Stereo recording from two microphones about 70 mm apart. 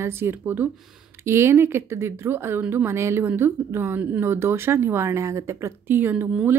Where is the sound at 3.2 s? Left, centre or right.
Right.